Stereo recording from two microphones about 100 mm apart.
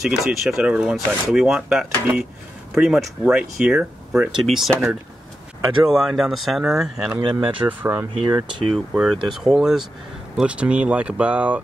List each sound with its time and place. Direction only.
0.0 s speech: centre (ahead or behind)
7.2 s speech: 50° right (ahead or behind)
7.5 s speech: 15° right (ahead or behind)
8.9 s speech: 5° right (ahead or behind)